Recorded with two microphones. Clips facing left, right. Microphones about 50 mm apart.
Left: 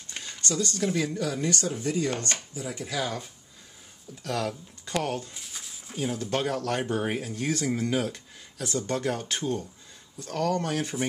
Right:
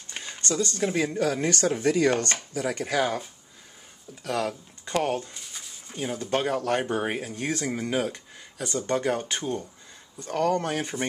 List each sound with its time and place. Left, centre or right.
0.1 s a sound: right
1.0 s speech: right
4.1 s speech: centre
5.3 s speech: centre